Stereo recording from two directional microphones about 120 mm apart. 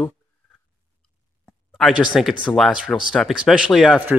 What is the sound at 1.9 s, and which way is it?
Speech, 10° right (ahead or behind).